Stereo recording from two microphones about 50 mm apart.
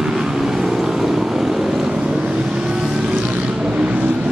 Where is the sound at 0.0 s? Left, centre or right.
Centre.